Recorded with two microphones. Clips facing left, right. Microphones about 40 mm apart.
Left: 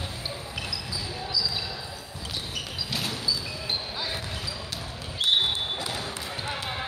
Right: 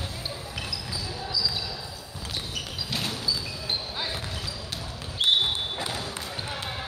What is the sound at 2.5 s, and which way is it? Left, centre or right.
Basketball bounce, centre.